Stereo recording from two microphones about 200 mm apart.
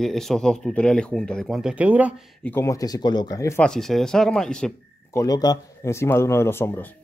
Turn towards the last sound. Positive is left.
turn(degrees=10)  # may be behind; listen again after turning